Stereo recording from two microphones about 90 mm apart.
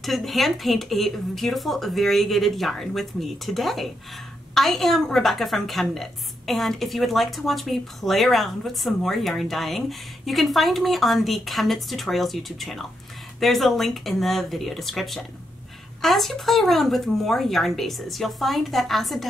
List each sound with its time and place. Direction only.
0.0 s a woman's voice: centre (ahead or behind)